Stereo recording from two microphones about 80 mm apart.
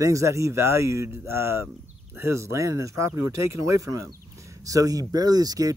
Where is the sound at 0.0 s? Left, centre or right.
Right.